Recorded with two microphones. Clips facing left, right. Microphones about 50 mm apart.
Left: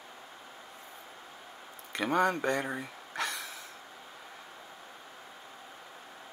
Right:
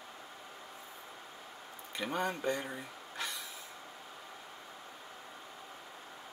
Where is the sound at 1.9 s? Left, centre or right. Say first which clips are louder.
Left 7 dB; left.